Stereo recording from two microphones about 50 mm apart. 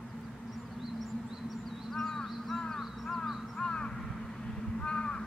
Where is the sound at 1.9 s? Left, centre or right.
Centre.